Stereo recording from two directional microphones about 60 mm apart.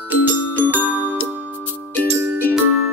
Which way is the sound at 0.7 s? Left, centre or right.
Right.